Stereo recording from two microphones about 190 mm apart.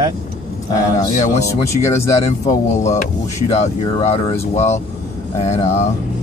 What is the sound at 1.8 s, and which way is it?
Speech, 15° left (ahead or behind).